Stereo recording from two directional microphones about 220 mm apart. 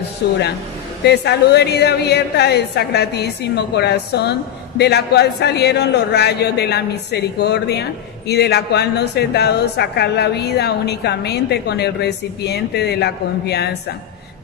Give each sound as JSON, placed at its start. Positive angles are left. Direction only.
{"t": 0.2, "sound": "a woman's voice", "side_deg": 50}